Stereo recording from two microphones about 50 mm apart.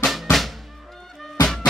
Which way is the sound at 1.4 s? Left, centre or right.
Centre.